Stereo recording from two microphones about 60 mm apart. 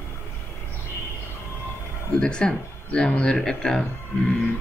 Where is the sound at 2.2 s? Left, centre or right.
Centre.